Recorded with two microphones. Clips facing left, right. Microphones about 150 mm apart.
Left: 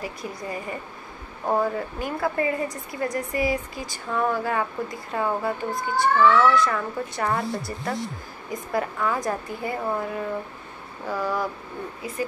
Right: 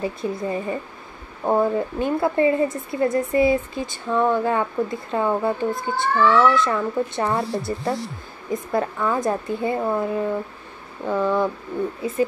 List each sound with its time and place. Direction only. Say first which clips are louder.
0.0 s speech: right 7 dB; 25° right (ahead or behind)